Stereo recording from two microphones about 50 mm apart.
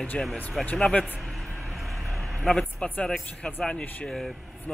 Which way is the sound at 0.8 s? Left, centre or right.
Centre.